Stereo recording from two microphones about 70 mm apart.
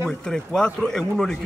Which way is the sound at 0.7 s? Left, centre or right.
Centre.